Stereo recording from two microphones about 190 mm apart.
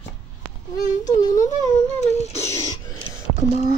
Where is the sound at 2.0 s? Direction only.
35° left (ahead or behind).